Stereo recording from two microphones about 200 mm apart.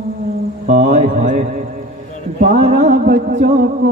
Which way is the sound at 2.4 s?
35° right (ahead or behind).